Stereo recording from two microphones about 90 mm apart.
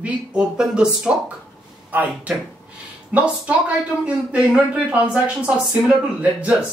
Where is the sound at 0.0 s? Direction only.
10° right (ahead or behind).